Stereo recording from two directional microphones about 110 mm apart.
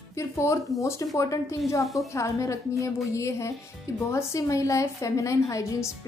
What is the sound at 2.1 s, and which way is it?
A woman's voice, 25° left (ahead or behind).